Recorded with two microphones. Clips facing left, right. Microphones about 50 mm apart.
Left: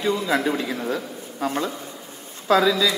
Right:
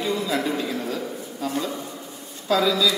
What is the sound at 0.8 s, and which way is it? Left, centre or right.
A man's voice, left.